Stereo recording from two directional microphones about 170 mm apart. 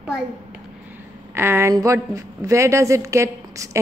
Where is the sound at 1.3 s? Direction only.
15° right (ahead or behind).